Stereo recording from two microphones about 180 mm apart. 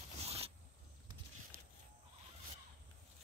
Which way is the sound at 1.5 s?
55° right (ahead or behind).